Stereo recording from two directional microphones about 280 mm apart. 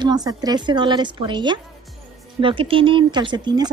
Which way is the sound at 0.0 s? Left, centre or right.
Centre.